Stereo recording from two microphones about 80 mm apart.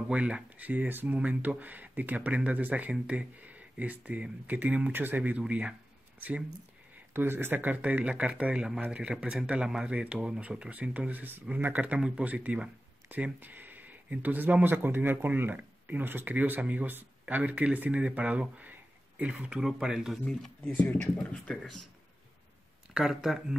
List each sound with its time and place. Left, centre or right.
0.1 s speech: centre
20.2 s speech: centre
22.9 s speech: centre